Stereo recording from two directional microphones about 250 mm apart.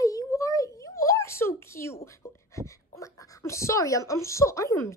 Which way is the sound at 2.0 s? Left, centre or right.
Centre.